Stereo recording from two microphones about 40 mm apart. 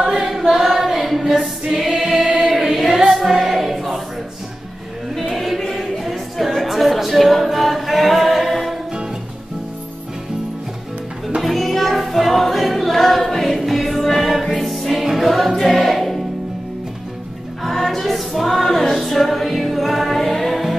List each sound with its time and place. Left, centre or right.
0.0 s choir: centre
2.4 s choir: centre
5.3 s a sound: centre
11.4 s music: centre
17.6 s music: centre